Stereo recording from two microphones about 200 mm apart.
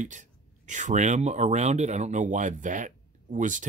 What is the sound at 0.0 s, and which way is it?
Speech, 40° right (ahead or behind).